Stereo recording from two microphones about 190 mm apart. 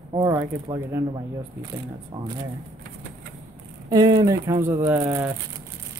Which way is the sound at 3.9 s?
20° right (ahead or behind).